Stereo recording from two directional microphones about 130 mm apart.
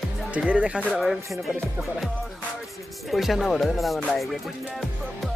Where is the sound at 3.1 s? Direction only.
Centre (ahead or behind).